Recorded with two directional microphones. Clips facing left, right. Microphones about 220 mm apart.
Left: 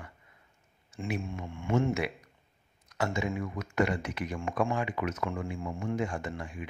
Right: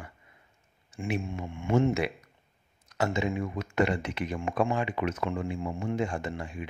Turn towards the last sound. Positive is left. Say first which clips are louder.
# right 2 dB
turn(degrees=-25)  # may be behind; listen again after turning